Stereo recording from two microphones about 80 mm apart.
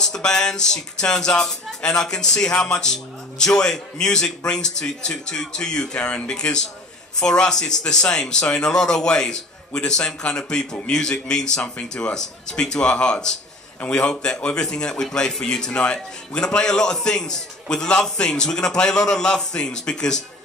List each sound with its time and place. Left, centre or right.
0.0 s a man's voice: centre